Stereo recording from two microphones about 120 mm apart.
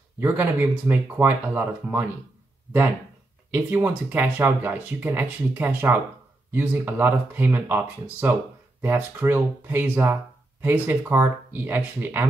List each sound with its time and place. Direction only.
0.2 s speech: 20° right (ahead or behind)
3.5 s speech: 15° right (ahead or behind)